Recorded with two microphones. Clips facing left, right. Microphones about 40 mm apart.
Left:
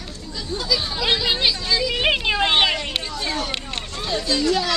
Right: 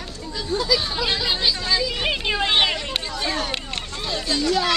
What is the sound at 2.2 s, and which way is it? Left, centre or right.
Speech, centre.